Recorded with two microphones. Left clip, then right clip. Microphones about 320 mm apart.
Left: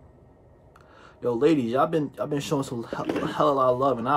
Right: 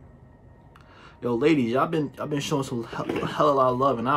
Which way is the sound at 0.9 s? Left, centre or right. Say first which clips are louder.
Left 1 dB; centre.